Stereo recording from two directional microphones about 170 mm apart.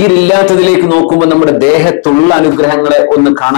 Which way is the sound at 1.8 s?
10° left (ahead or behind).